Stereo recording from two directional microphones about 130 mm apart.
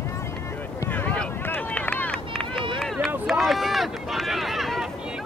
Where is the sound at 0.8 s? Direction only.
15° left (ahead or behind).